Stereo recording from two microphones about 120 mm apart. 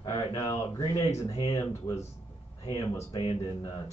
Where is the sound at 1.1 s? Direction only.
30° left (ahead or behind).